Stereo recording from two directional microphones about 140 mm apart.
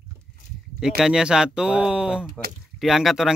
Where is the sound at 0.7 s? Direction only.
5° right (ahead or behind).